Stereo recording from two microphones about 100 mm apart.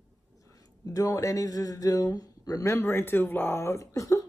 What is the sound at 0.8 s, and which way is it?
Speech, 35° left (ahead or behind).